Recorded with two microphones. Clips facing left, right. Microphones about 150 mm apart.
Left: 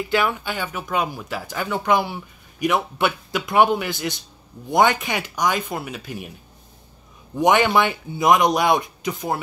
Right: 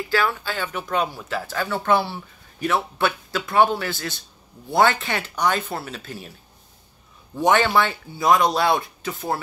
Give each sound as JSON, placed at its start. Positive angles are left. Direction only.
{"t": 0.1, "sound": "speech", "side_deg": 20}
{"t": 7.3, "sound": "speech", "side_deg": 15}